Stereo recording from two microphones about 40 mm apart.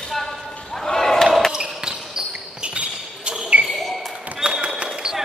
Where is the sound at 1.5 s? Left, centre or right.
Centre.